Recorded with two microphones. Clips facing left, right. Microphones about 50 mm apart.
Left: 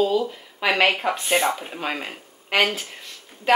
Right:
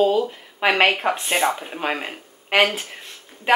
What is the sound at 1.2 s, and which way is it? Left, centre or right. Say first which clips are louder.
Speech: even; centre.